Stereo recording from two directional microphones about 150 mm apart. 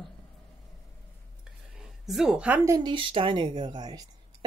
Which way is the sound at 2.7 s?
30° right (ahead or behind).